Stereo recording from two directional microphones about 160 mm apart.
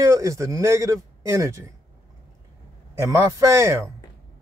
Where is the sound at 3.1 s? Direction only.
20° right (ahead or behind).